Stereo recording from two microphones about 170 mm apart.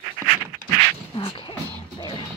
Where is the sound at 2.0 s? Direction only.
25° left (ahead or behind).